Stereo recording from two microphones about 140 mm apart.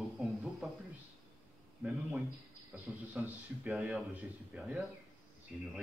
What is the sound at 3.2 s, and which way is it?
A man's voice, 5° right (ahead or behind).